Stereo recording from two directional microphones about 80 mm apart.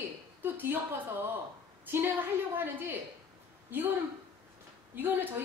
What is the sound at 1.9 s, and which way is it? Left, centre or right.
Speech, right.